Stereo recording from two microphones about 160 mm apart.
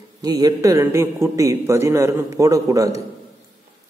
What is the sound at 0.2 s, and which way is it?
A man's voice, 25° right (ahead or behind).